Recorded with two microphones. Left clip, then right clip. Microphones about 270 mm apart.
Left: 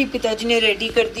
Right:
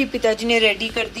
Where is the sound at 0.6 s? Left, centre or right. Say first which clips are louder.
Left 1 dB; right.